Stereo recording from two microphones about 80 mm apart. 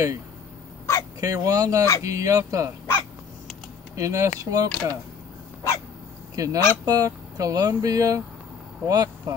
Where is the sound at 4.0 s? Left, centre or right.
Right.